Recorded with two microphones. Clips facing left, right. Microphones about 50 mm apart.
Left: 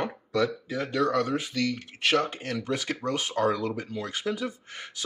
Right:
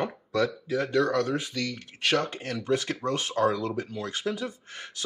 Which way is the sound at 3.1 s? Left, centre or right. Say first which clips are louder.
Even; left.